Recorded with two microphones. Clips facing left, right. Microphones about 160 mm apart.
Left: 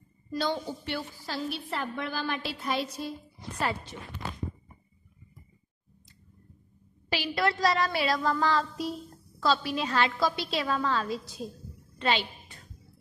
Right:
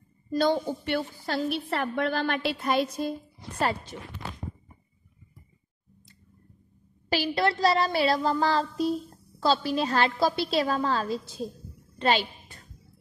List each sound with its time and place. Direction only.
0.3 s a woman's voice: 50° right (ahead or behind)
7.1 s a woman's voice: 40° right (ahead or behind)